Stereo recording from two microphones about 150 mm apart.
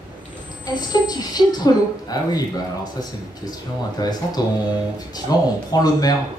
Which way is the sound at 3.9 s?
25° left (ahead or behind).